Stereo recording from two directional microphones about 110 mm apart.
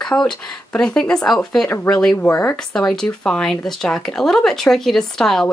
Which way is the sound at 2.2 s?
20° left (ahead or behind).